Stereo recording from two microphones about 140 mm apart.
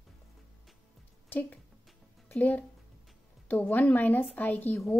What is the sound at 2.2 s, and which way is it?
A woman's voice, 10° left (ahead or behind).